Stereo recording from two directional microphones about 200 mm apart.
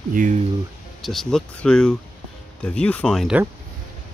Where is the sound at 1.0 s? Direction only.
Centre (ahead or behind).